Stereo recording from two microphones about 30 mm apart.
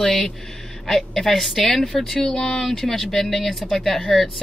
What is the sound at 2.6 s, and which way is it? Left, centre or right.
Speech, centre.